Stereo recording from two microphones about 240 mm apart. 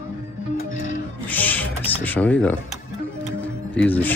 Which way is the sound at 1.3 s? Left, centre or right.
Centre.